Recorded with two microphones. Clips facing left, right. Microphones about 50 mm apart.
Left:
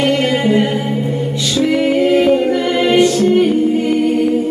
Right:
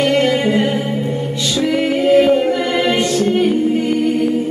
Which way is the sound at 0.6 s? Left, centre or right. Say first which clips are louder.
Left 1 dB; centre.